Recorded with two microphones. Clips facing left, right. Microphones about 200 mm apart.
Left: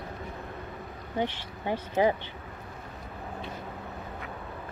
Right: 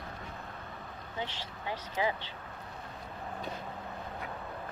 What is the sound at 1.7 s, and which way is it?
Speech, 55° left (ahead or behind).